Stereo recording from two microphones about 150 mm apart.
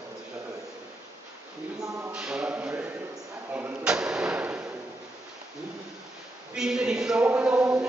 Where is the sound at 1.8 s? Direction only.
20° right (ahead or behind).